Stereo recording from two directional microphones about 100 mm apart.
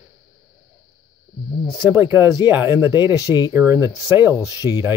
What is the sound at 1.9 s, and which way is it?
Speech, 25° right (ahead or behind).